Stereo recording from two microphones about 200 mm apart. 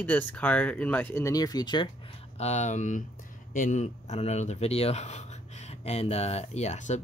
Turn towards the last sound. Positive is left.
turn(degrees=35)  # may be behind; listen again after turning